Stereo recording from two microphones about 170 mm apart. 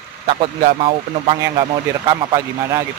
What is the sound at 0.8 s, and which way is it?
Speech, 30° right (ahead or behind).